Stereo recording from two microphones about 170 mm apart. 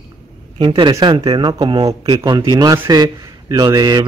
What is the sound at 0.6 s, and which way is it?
A man's voice, 30° right (ahead or behind).